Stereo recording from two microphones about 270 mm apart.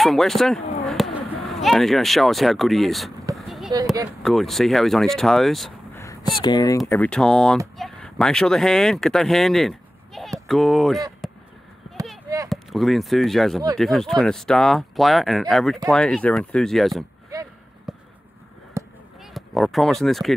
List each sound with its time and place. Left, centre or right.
0.0 s speech: centre
3.3 s a sound: centre
4.2 s speech: centre
6.4 s speech: centre
12.4 s speech: centre
17.9 s a sound: centre
18.8 s chop: centre
19.3 s speech: centre